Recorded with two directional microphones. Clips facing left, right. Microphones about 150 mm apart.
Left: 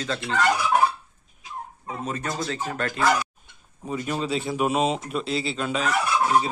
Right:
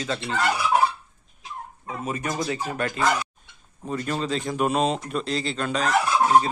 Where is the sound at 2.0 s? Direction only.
10° right (ahead or behind).